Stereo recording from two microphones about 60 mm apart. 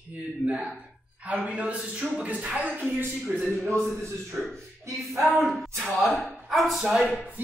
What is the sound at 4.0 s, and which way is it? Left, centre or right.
Speech, right.